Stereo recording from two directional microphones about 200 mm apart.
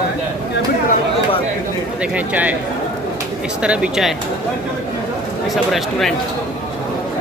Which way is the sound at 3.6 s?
5° right (ahead or behind).